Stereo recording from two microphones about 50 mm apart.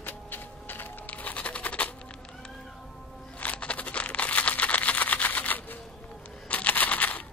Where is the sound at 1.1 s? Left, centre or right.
Left.